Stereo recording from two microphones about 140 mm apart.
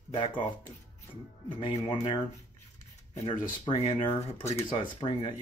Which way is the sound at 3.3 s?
40° left (ahead or behind).